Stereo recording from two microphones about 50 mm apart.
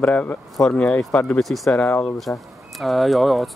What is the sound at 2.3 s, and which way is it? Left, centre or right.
Speech, left.